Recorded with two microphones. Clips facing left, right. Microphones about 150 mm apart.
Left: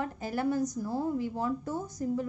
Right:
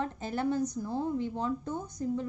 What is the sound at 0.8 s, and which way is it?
Speech, 10° left (ahead or behind).